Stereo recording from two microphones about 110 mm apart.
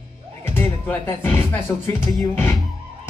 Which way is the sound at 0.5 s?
15° left (ahead or behind).